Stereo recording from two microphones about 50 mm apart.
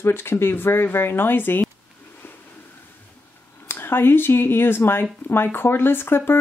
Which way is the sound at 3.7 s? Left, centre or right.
Left.